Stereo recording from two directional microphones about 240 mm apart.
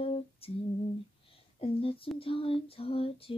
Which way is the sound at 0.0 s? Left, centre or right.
Left.